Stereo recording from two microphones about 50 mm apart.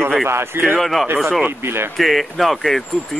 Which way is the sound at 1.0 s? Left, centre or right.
Right.